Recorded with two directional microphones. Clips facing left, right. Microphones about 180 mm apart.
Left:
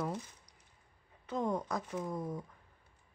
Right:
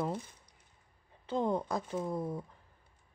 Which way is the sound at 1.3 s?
30° right (ahead or behind).